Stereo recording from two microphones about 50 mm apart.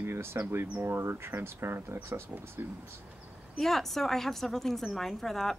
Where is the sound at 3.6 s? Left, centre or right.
Centre.